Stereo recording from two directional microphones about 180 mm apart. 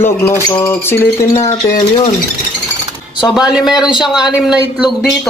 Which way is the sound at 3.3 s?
5° right (ahead or behind).